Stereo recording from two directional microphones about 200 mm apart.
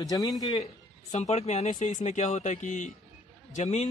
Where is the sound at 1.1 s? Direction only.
35° left (ahead or behind).